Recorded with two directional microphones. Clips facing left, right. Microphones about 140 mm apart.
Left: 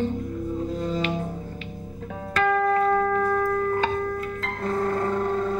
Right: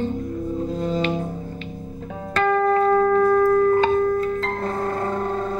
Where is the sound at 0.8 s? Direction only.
25° right (ahead or behind).